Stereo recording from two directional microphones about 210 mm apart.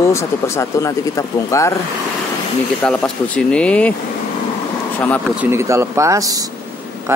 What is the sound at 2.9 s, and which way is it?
Speech, 5° left (ahead or behind).